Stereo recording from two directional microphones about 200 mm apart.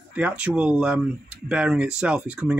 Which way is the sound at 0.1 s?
5° right (ahead or behind).